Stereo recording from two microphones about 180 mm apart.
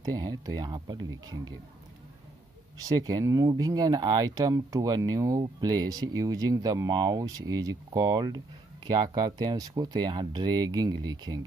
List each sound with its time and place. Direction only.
0.0 s speech: 20° right (ahead or behind)
2.8 s speech: 20° right (ahead or behind)